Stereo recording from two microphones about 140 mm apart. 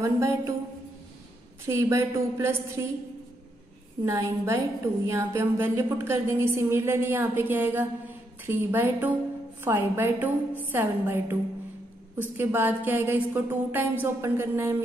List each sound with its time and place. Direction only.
0.0 s a woman's voice: 20° right (ahead or behind)
1.7 s a woman's voice: 20° right (ahead or behind)
4.0 s a woman's voice: 20° right (ahead or behind)